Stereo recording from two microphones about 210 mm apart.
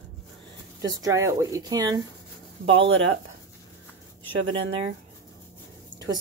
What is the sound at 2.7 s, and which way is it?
Speech, 65° right (ahead or behind).